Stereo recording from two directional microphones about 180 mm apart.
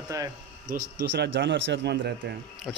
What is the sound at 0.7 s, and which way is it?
Speech, 65° right (ahead or behind).